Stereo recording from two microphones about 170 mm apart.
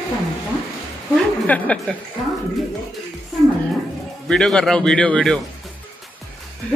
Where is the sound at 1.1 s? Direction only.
5° left (ahead or behind).